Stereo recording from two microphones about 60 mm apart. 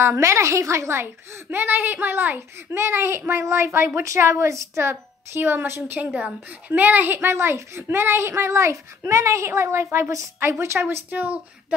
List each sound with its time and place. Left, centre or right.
0.0 s a woman's voice: right
2.3 s a woman's voice: right
5.9 s a woman's voice: right
11.1 s speech: right